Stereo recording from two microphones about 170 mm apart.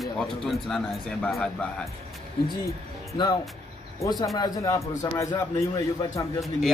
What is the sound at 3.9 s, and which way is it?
A man's voice, 20° left (ahead or behind).